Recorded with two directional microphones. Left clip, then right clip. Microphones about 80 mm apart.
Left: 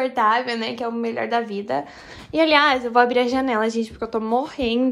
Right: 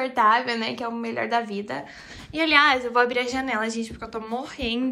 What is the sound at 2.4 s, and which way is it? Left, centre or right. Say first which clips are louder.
A woman's voice: even; left.